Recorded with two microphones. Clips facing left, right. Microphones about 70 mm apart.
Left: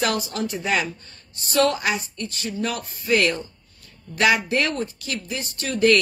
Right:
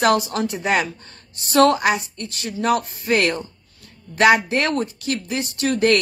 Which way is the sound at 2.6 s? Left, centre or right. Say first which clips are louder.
Right 10 dB; right.